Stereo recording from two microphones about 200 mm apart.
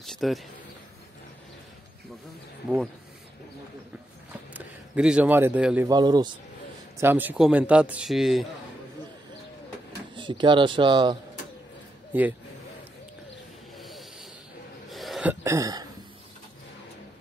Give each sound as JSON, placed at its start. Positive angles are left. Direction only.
{"t": 0.0, "sound": "a sound", "side_deg": 0}
{"t": 4.6, "sound": "a man's voice", "side_deg": -5}
{"t": 5.9, "sound": "speech", "side_deg": -20}
{"t": 7.0, "sound": "speech", "side_deg": -10}
{"t": 10.1, "sound": "speech", "side_deg": -25}
{"t": 12.1, "sound": "a man's voice", "side_deg": -10}
{"t": 13.7, "sound": "a sound", "side_deg": 0}
{"t": 15.4, "sound": "throat clearing", "side_deg": -15}